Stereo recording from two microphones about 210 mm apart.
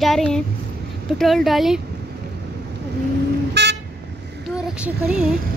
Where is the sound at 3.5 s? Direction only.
55° right (ahead or behind).